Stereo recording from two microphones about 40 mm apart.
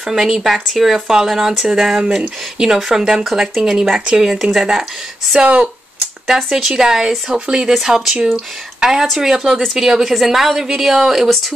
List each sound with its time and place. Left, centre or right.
0.0 s speech: centre
6.2 s speech: centre
7.7 s speech: centre
8.7 s a sound: centre
9.2 s speech: centre